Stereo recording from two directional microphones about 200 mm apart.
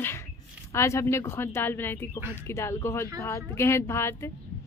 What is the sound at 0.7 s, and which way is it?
A woman's voice, 15° left (ahead or behind).